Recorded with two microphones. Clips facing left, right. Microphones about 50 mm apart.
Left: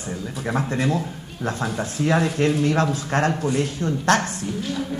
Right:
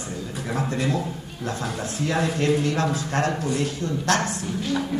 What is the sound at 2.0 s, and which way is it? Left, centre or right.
Speech, left.